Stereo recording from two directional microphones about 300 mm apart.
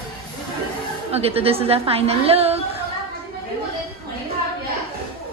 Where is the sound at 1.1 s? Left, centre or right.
Centre.